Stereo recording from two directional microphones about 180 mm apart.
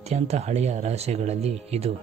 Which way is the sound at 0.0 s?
35° right (ahead or behind).